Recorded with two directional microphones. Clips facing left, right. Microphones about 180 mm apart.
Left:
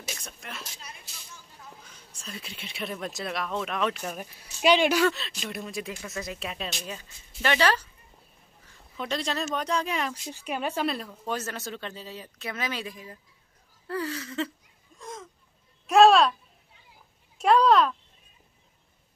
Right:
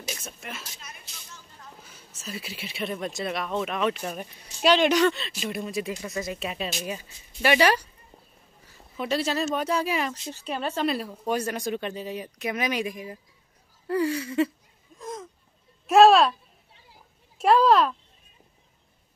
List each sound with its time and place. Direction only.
0.1 s speech: 5° right (ahead or behind)
0.7 s speech: 30° left (ahead or behind)
1.9 s speech: 5° right (ahead or behind)
8.6 s a sound: 5° right (ahead or behind)
9.6 s speech: 5° right (ahead or behind)
10.3 s speech: 10° left (ahead or behind)
11.2 s speech: 15° right (ahead or behind)
15.0 s a sound: centre (ahead or behind)
15.9 s speech: centre (ahead or behind)
17.4 s speech: centre (ahead or behind)